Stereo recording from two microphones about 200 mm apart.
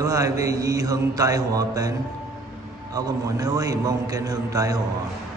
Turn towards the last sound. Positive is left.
turn(degrees=-15)  # may be behind; listen again after turning